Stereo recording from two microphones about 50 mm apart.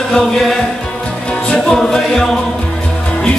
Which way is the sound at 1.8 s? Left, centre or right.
Centre.